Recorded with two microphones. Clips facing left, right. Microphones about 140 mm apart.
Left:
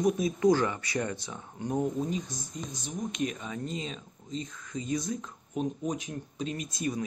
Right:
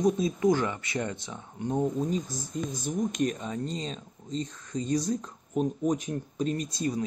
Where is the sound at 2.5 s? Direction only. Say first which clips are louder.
Right 7 dB; centre (ahead or behind).